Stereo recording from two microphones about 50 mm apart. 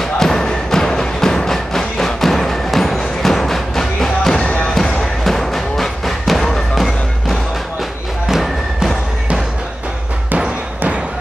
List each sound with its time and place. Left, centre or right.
0.0 s music: centre
4.4 s music: left
5.2 s music: centre